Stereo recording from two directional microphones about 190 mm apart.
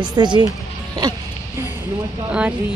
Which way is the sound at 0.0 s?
25° right (ahead or behind).